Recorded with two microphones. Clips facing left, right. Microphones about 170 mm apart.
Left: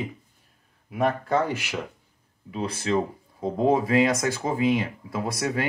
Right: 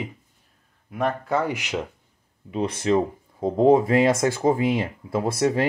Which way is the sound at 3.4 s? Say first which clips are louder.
Right 5 dB; 25° right (ahead or behind).